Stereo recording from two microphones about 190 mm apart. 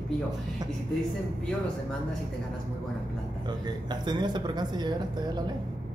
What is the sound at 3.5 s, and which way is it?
Speech, 25° right (ahead or behind).